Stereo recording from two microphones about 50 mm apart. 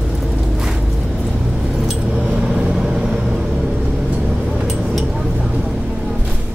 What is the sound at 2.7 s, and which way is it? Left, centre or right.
Vehicle, centre.